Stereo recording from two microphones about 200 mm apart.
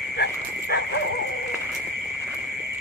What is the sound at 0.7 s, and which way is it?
Bow-wow, 55° left (ahead or behind).